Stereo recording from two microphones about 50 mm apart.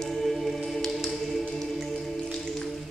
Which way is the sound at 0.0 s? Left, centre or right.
Centre.